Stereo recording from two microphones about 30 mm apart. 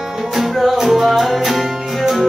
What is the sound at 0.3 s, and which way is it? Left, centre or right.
Music, centre.